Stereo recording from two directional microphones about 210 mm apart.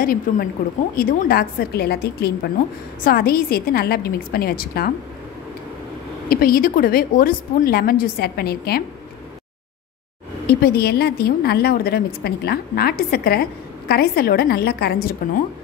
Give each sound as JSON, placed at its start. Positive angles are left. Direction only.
{"t": 0.0, "sound": "a woman's voice", "side_deg": 40}
{"t": 6.2, "sound": "a woman's voice", "side_deg": 45}
{"t": 10.4, "sound": "a woman's voice", "side_deg": 45}